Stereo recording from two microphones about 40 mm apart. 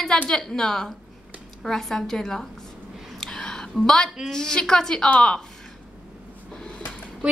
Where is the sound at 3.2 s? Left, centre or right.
Centre.